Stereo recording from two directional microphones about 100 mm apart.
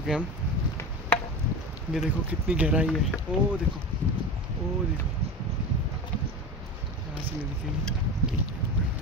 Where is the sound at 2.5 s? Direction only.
15° right (ahead or behind).